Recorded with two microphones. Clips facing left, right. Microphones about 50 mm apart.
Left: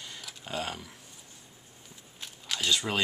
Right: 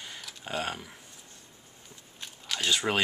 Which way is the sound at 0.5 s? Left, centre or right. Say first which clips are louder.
Right 2 dB; centre.